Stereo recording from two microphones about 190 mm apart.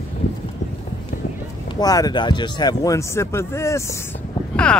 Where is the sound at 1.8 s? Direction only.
20° left (ahead or behind).